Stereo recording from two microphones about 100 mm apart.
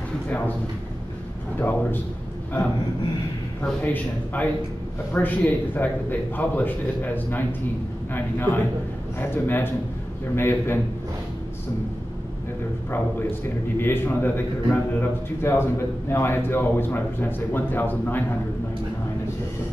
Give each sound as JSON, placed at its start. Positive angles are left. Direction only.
{"t": 1.6, "sound": "a man's voice", "side_deg": 20}
{"t": 3.8, "sound": "a man's voice", "side_deg": 20}
{"t": 13.7, "sound": "a man's voice", "side_deg": 20}